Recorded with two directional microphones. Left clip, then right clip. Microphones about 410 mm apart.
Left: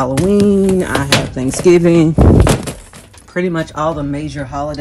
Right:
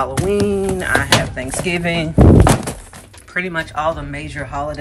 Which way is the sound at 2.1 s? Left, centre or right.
Centre.